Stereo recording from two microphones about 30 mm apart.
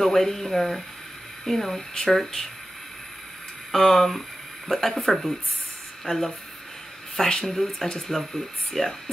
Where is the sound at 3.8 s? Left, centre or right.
Centre.